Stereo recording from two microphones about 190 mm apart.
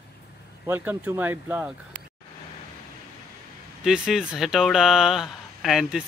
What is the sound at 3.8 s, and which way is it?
Speech, 5° right (ahead or behind).